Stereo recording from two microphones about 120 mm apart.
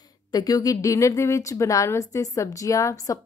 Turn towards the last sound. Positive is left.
turn(degrees=30)  # may be behind; listen again after turning